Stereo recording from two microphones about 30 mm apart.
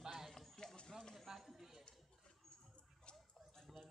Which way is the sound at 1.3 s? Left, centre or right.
Centre.